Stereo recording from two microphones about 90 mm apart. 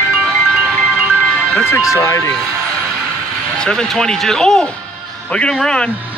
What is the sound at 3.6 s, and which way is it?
Speech, 5° left (ahead or behind).